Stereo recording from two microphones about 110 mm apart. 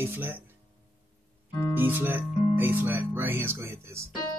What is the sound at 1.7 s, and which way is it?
Speech, 15° right (ahead or behind).